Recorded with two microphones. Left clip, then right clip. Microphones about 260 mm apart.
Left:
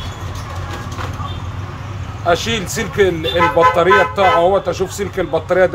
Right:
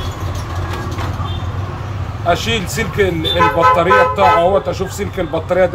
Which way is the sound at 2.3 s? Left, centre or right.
Left.